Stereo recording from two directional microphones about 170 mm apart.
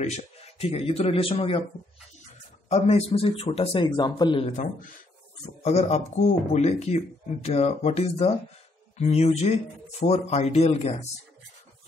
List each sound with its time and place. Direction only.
0.0 s speech: 40° left (ahead or behind)
2.7 s speech: 35° left (ahead or behind)
5.6 s speech: 40° left (ahead or behind)